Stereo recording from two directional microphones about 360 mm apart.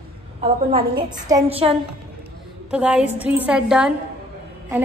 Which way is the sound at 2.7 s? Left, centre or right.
Centre.